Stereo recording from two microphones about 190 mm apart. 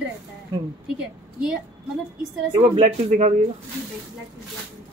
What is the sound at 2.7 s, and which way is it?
Speech, 35° right (ahead or behind).